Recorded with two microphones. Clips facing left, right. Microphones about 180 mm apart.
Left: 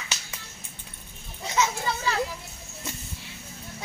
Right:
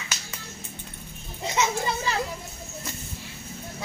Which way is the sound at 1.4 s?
20° right (ahead or behind).